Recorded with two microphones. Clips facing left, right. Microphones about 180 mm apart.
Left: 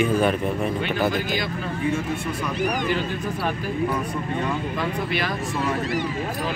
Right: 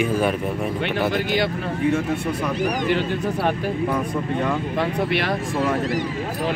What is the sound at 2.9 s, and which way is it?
Speech, 65° right (ahead or behind).